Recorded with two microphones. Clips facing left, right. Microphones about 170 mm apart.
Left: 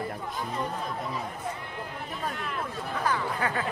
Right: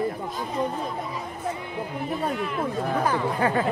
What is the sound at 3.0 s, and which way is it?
Speech, 25° right (ahead or behind).